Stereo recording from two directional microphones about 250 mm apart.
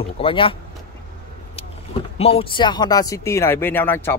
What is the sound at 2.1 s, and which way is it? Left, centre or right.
A man's voice, left.